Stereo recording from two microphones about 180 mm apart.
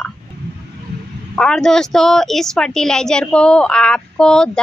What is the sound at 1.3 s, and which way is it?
A woman's voice, 5° left (ahead or behind).